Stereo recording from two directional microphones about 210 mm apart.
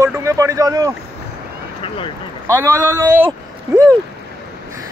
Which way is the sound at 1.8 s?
25° left (ahead or behind).